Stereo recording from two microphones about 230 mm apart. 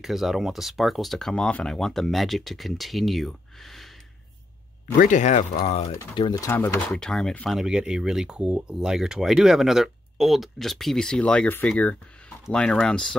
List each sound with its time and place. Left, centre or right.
0.0 s speech: centre
4.9 s speech: left
5.9 s speech: centre